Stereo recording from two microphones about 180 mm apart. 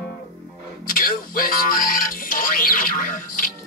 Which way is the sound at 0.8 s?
50° left (ahead or behind).